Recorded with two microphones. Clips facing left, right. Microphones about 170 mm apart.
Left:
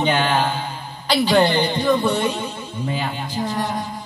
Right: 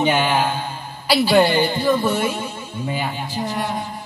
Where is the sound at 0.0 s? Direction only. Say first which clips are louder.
Right 1 dB; 10° right (ahead or behind).